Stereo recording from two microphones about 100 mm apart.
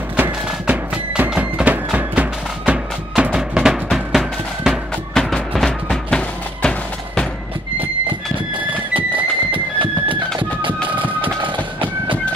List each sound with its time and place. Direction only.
0.1 s music: 15° right (ahead or behind); by 6.7 s 10° left (ahead or behind)
8.9 s music: 60° right (ahead or behind)
11.4 s train: 55° right (ahead or behind)